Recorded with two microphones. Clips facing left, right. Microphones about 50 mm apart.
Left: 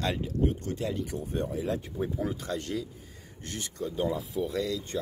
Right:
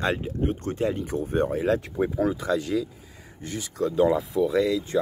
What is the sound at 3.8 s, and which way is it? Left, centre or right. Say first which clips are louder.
Speech: right 9 dB; right.